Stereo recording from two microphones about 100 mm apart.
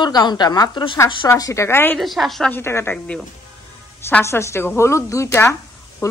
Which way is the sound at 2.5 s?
25° left (ahead or behind).